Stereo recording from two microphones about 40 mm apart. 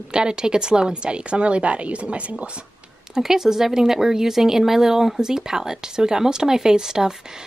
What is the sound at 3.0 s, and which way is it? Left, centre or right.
A woman's voice, centre.